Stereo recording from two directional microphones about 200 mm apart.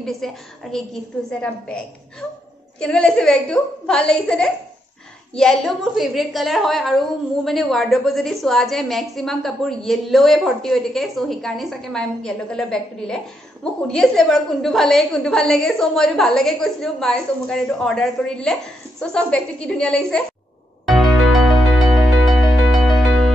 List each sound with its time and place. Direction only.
0.0 s a woman's voice: centre (ahead or behind)
20.8 s music: centre (ahead or behind)